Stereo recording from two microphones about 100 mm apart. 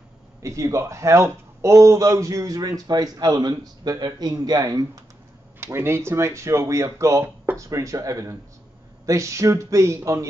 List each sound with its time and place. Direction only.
0.4 s a man's voice: 30° right (ahead or behind)
5.6 s a man's voice: 25° right (ahead or behind)